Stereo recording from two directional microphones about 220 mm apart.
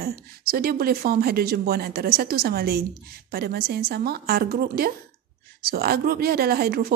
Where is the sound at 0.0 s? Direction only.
45° right (ahead or behind).